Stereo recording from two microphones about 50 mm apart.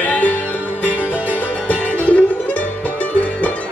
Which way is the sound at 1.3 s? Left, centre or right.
Left.